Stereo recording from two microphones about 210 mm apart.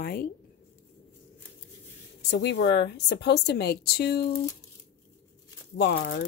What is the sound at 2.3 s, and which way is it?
A woman's voice, 55° left (ahead or behind).